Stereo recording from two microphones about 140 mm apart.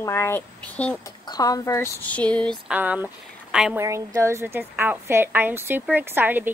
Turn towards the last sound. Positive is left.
turn(degrees=-15)  # may be behind; listen again after turning